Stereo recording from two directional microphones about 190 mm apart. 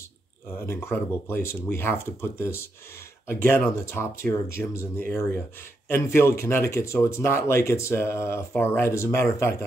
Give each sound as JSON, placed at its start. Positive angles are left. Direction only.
{"t": 0.5, "sound": "speech", "side_deg": 10}